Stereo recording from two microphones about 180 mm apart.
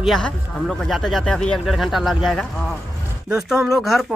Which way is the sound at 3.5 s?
15° right (ahead or behind).